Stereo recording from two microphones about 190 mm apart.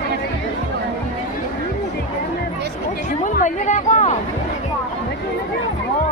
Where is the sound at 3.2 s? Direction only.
40° left (ahead or behind).